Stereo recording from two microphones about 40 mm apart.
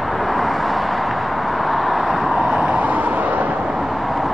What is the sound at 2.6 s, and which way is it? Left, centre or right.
Vehicle, right.